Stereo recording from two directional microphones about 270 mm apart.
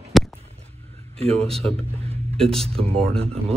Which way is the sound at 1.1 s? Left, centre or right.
Right.